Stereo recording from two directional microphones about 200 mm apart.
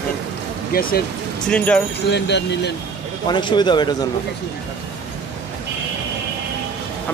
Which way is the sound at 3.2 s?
20° left (ahead or behind).